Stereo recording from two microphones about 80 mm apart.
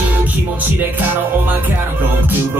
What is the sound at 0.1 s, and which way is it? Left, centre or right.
Music, right.